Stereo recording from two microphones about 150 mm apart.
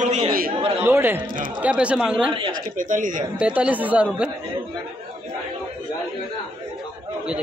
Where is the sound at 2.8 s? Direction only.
60° right (ahead or behind).